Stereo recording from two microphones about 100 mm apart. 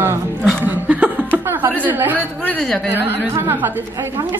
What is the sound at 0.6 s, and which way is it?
Chuckle, 15° right (ahead or behind).